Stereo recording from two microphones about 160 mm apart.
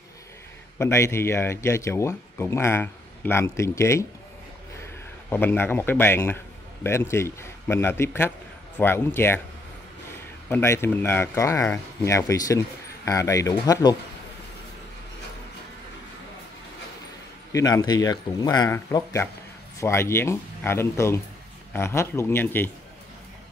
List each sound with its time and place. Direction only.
0.7 s speech: 15° left (ahead or behind)
5.3 s speech: 15° left (ahead or behind)
10.5 s speech: 15° left (ahead or behind)
17.5 s speech: 20° left (ahead or behind)